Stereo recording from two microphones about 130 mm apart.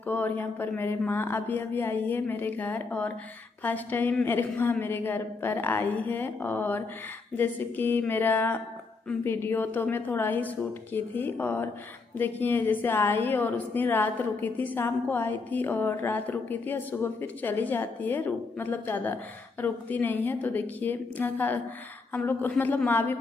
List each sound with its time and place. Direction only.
0.0 s a woman's voice: 15° left (ahead or behind)